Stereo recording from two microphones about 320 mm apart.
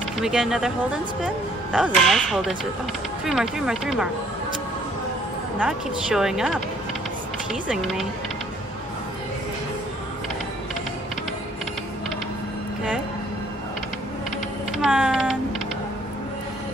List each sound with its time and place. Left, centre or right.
0.2 s a woman's voice: centre
5.6 s a woman's voice: centre
7.6 s a woman's voice: centre
14.7 s typing: centre